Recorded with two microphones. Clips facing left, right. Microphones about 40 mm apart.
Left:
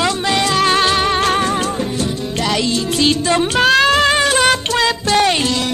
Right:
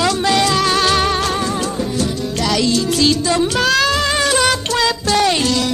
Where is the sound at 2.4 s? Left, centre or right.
Left.